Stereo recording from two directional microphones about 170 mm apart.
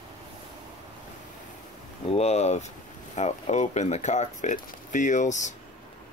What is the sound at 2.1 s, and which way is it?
Speech, 40° left (ahead or behind).